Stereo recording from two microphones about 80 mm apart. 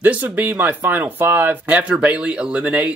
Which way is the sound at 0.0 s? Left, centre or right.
Right.